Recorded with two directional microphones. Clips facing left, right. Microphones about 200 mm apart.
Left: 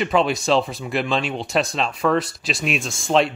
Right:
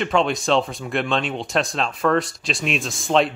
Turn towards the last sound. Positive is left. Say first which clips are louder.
# even
turn(degrees=0)  # may be behind; listen again after turning